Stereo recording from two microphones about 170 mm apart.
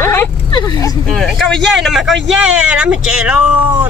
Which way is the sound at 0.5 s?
25° left (ahead or behind).